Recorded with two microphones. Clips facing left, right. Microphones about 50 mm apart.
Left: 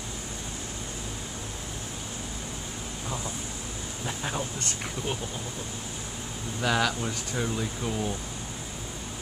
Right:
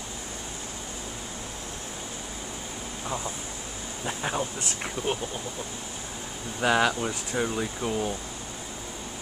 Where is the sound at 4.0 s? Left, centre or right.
Centre.